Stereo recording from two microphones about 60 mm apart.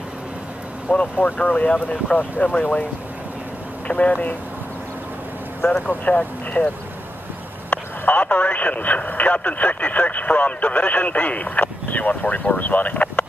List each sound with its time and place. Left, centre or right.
1.1 s speech: left
5.9 s speech: left
7.7 s speech: left